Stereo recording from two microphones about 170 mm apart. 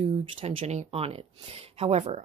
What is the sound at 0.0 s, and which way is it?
Speech, 30° right (ahead or behind).